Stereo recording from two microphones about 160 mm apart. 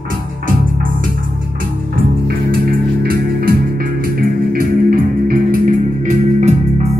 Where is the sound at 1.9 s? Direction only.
70° right (ahead or behind); by 6.9 s 45° right (ahead or behind).